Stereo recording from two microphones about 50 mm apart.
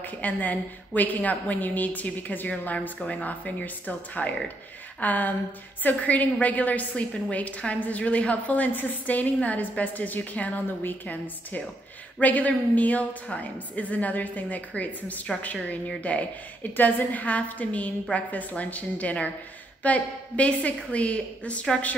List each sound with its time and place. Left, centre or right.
0.0 s a woman's voice: left
3.0 s a woman's voice: left
16.7 s a woman's voice: left